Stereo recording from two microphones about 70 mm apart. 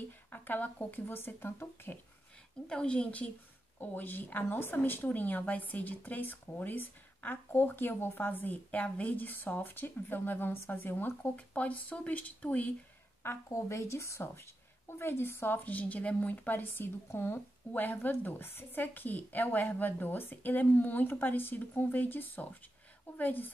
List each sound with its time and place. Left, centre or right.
0.3 s a woman's voice: left
2.7 s a woman's voice: centre
3.8 s a woman's voice: left
13.5 s a woman's voice: left